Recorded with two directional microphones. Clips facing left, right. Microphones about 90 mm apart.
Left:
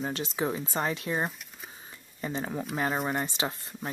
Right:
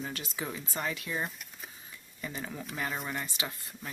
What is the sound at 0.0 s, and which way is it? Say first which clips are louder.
Speech: left 7 dB; 30° left (ahead or behind).